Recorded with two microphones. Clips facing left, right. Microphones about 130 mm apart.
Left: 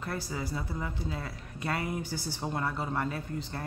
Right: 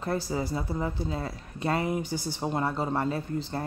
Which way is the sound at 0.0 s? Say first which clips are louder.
Right 6 dB; 30° right (ahead or behind).